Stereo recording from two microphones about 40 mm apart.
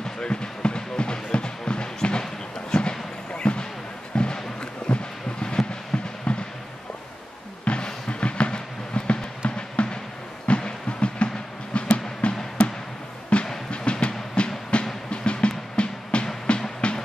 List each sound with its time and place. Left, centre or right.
0.2 s music: left
2.7 s a sound: left
7.6 s a sound: left
9.4 s music: left
10.6 s train: left
11.7 s music: left